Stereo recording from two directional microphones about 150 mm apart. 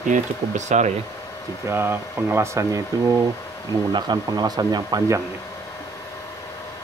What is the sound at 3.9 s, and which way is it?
Speech, 30° right (ahead or behind).